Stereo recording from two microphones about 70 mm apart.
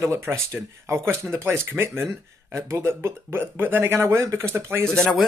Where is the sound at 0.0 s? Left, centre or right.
Right.